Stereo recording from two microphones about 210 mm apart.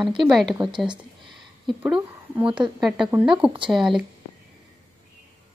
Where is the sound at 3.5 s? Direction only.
20° right (ahead or behind).